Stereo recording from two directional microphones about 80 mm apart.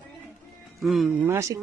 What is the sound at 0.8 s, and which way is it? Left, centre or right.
Speech, centre.